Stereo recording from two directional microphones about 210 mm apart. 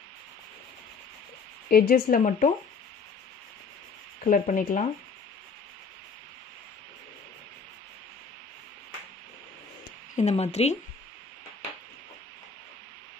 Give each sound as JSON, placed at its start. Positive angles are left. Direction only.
{"t": 1.7, "sound": "speech", "side_deg": 45}
{"t": 4.2, "sound": "speech", "side_deg": 40}
{"t": 10.1, "sound": "speech", "side_deg": 30}